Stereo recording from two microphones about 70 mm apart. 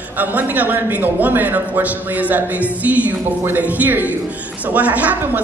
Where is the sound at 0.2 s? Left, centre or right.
Right.